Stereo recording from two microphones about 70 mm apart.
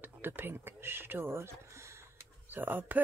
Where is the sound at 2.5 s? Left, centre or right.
Right.